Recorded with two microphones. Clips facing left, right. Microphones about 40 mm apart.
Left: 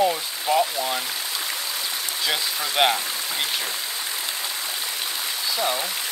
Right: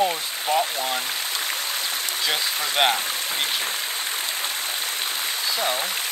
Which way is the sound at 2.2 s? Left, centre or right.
Centre.